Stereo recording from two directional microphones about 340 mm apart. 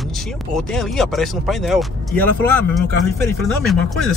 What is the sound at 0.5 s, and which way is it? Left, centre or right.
Speech, centre.